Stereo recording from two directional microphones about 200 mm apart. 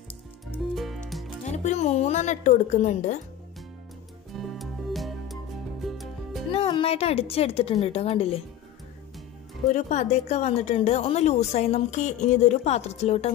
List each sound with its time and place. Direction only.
0.7 s music: centre (ahead or behind)
1.4 s a woman's voice: 35° left (ahead or behind)
4.3 s music: centre (ahead or behind)
6.5 s a woman's voice: 30° left (ahead or behind)
9.7 s a woman's voice: 35° left (ahead or behind)